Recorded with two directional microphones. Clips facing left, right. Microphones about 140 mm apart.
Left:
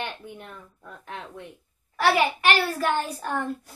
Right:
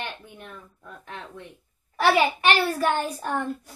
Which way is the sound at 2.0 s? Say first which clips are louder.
Right 1 dB; 20° right (ahead or behind).